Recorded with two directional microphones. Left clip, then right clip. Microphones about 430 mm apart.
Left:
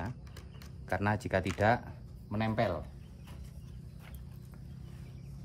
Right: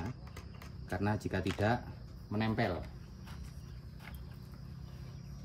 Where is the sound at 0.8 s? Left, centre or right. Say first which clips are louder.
Left 4 dB; centre.